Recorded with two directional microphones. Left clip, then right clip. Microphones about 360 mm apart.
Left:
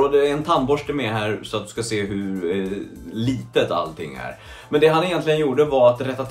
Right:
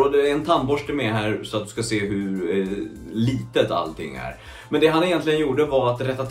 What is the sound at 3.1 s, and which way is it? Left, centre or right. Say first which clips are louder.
Speech: even; centre.